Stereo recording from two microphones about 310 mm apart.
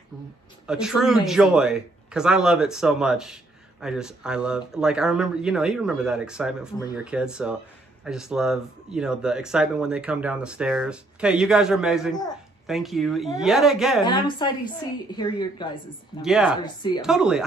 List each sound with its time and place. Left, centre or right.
0.7 s speech: centre
14.0 s a woman's voice: centre
16.2 s speech: centre
16.6 s a woman's voice: centre
17.0 s speech: centre